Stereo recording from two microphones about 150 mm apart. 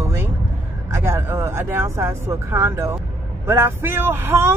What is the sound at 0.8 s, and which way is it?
Speech, 20° right (ahead or behind).